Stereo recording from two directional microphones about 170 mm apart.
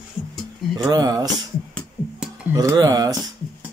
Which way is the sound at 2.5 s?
20° right (ahead or behind).